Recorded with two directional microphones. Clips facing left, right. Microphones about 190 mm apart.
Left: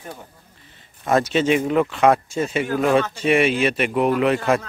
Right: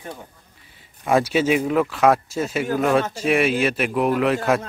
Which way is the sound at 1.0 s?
10° right (ahead or behind).